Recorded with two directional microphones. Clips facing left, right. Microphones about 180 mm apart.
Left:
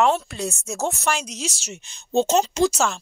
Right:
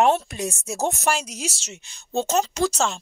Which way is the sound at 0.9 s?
40° right (ahead or behind).